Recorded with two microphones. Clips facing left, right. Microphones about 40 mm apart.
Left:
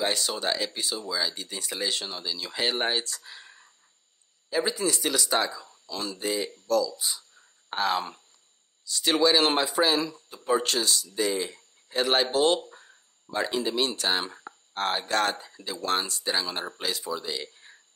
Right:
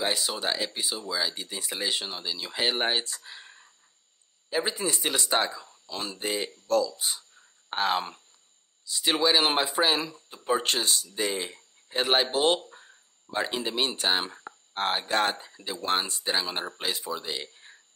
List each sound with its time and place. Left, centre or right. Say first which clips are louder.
0.0 s speech: left 1 dB; centre; by 7.2 s right
7.7 s speech: even; right
10.6 s speech: even; right; by 17.7 s centre